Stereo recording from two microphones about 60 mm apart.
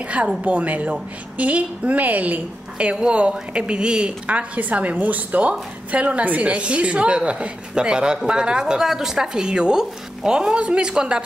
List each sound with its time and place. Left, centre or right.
0.4 s a woman's voice: right